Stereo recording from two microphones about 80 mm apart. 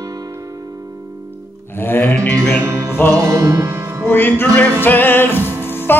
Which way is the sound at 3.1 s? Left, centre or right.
Right.